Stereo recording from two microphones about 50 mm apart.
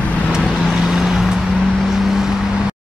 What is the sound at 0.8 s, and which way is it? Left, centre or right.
Vehicle, centre.